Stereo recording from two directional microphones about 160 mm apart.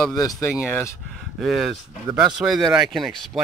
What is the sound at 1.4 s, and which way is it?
Speech, centre (ahead or behind).